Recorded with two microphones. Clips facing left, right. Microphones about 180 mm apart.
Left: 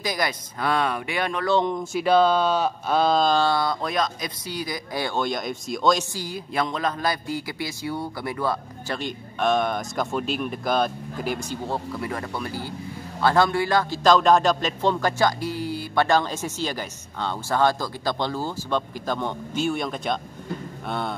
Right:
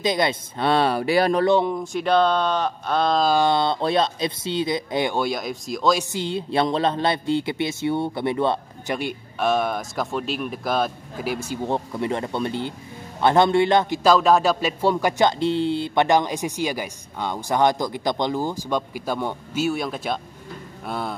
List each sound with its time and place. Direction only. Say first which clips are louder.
0.0 s speech: right 5 dB; 25° right (ahead or behind)
1.5 s speech: right 3 dB; 10° right (ahead or behind)
1.8 s speech: even; 5° left (ahead or behind)
3.3 s speech: right 3 dB; 20° right (ahead or behind)
5.2 s speech: right 1 dB; 5° right (ahead or behind)
6.1 s speech: right 5 dB; 25° right (ahead or behind)
8.9 s speech: right 3 dB; 10° right (ahead or behind)
11.6 s speech: right 4 dB; 20° right (ahead or behind)
14.1 s speech: even; 5° right (ahead or behind)